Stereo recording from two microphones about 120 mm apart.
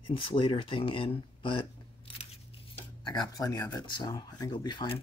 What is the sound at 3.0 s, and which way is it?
Speech, 35° left (ahead or behind).